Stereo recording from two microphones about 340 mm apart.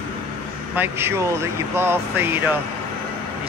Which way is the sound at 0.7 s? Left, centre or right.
Centre.